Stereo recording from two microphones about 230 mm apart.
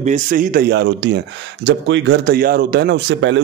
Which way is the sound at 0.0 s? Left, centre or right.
Right.